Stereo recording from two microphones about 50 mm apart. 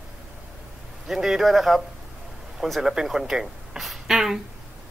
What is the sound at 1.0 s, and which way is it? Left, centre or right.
A man's voice, centre.